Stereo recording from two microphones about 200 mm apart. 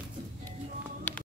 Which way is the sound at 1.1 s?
10° left (ahead or behind).